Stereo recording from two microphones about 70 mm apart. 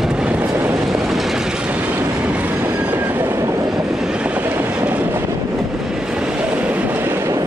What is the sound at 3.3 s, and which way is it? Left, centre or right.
Train, right.